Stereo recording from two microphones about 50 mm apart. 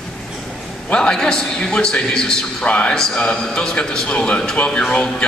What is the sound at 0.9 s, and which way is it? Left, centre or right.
A man's voice, centre.